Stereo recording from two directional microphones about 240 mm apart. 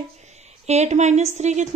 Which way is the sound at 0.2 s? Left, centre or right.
Right.